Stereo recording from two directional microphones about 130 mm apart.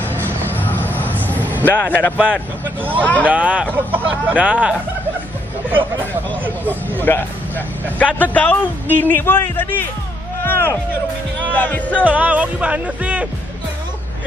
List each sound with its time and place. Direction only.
0.5 s mouse: 15° left (ahead or behind)
1.2 s vehicle: 15° left (ahead or behind)
3.0 s a man's voice: 10° left (ahead or behind)
3.3 s music: 10° right (ahead or behind)
7.0 s a man's voice: 15° left (ahead or behind)
12.0 s music: 10° right (ahead or behind)